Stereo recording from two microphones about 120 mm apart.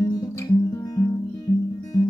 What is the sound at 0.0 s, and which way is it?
Music, 30° left (ahead or behind).